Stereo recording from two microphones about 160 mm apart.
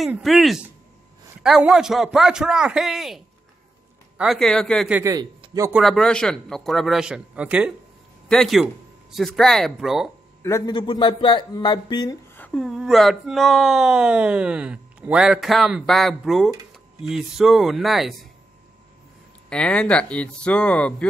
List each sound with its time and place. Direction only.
0.0 s speech: centre (ahead or behind)
4.2 s speech: centre (ahead or behind)
4.9 s a man's voice: 20° right (ahead or behind)
5.7 s speech: centre (ahead or behind)
10.7 s speech: 30° left (ahead or behind)
12.4 s a sound: 10° left (ahead or behind)
12.6 s speech: centre (ahead or behind)
19.5 s speech: 5° left (ahead or behind)